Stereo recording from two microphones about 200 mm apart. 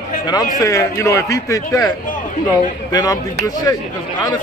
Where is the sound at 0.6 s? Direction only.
15° left (ahead or behind).